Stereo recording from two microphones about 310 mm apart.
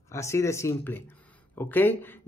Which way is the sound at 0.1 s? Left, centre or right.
Centre.